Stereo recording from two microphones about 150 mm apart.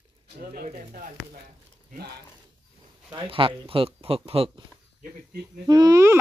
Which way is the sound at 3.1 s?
35° right (ahead or behind).